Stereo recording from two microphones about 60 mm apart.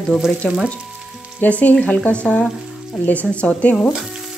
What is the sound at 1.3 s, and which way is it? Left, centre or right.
Speech, left.